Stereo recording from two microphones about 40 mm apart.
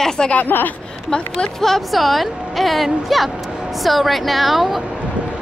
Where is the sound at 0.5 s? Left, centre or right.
Left.